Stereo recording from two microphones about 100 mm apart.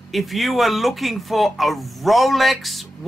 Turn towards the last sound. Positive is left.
turn(degrees=0)  # may be behind; listen again after turning